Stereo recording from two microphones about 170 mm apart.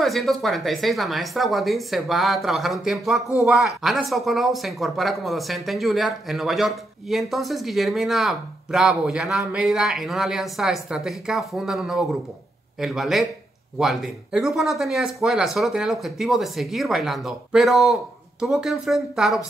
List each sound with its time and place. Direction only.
0.0 s speech: centre (ahead or behind)